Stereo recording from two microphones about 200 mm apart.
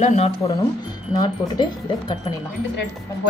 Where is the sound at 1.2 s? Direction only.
20° left (ahead or behind).